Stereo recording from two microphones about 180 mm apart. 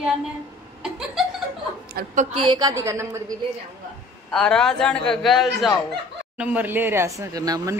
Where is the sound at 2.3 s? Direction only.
25° right (ahead or behind).